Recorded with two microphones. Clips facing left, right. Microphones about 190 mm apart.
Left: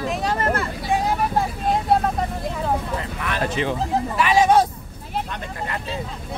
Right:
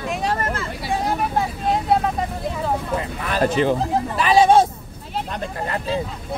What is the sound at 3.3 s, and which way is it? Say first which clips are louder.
Speech: right 5 dB; 40° right (ahead or behind).